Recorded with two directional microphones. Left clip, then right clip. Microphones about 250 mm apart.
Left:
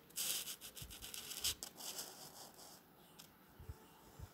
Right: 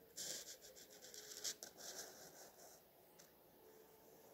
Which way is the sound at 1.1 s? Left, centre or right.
Centre.